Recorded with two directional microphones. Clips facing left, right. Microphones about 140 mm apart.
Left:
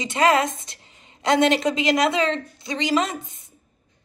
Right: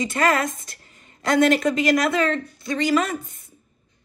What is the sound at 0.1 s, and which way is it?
A woman's voice, 20° left (ahead or behind).